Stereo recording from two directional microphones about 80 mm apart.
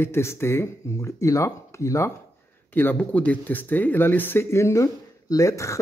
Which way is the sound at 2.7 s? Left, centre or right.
Left.